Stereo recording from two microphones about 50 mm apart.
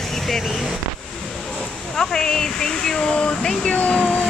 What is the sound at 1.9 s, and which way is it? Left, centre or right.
Speech, centre.